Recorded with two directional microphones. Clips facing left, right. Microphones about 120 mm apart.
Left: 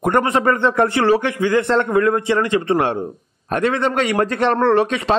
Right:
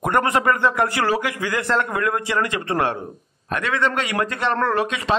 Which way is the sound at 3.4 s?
35° left (ahead or behind).